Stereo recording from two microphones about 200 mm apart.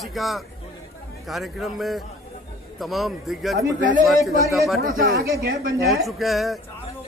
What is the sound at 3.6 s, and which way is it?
Speech, 45° right (ahead or behind).